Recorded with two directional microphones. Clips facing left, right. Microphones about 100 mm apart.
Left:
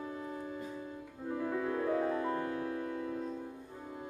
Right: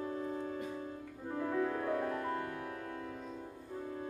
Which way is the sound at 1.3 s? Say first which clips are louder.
Even; 5° left (ahead or behind).